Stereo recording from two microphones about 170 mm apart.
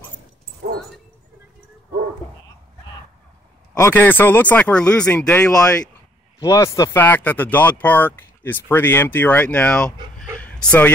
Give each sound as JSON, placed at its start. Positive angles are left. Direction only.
{"t": 0.6, "sound": "dog", "side_deg": -65}
{"t": 3.7, "sound": "speech", "side_deg": 15}
{"t": 6.4, "sound": "speech", "side_deg": 20}
{"t": 10.4, "sound": "a sound", "side_deg": 10}